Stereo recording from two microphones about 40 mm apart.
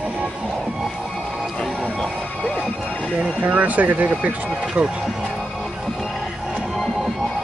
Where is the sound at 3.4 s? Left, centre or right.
Right.